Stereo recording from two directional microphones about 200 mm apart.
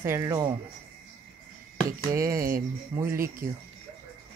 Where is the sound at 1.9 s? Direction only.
15° right (ahead or behind).